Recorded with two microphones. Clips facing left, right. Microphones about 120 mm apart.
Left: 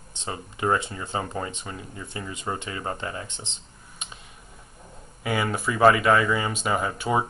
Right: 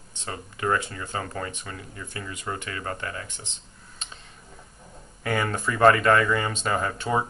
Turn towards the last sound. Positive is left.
turn(degrees=10)  # may be behind; listen again after turning